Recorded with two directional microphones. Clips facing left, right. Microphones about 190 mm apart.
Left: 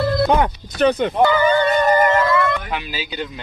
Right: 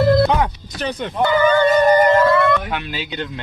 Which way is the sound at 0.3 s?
55° left (ahead or behind).